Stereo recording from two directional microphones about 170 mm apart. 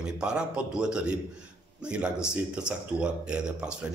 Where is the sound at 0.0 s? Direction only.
5° right (ahead or behind).